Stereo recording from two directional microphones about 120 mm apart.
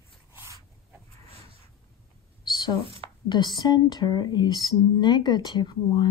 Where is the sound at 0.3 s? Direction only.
20° right (ahead or behind).